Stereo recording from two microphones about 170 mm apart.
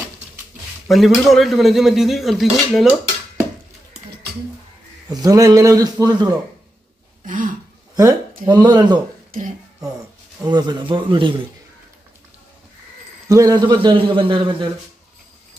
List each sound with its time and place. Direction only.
0.8 s speech: centre (ahead or behind)
5.1 s a man's voice: 20° right (ahead or behind)
7.2 s speech: 50° right (ahead or behind)
8.5 s a man's voice: 25° right (ahead or behind)
10.4 s a man's voice: 25° right (ahead or behind)
13.3 s a man's voice: 20° right (ahead or behind)